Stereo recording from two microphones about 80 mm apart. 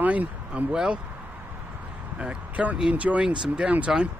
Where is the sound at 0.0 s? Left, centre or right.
Centre.